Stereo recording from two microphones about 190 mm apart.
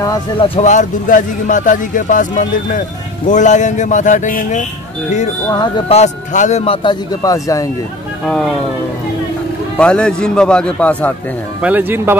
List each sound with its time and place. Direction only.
0.0 s speech: 20° left (ahead or behind)
0.6 s a man's voice: 40° left (ahead or behind)
5.5 s speech: 25° left (ahead or behind)
9.8 s a man's voice: 5° left (ahead or behind)
11.6 s speech: 10° right (ahead or behind)